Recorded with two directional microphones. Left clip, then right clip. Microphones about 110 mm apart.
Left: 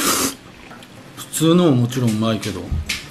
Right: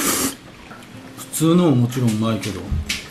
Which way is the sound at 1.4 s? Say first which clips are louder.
Left 2 dB; 15° left (ahead or behind).